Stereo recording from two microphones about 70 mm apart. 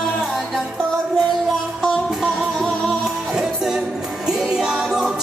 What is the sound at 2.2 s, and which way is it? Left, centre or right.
Music, centre.